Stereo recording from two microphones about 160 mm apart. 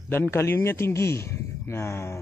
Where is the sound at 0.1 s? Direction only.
15° left (ahead or behind).